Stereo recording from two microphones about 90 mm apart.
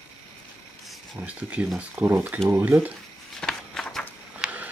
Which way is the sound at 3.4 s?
10° left (ahead or behind).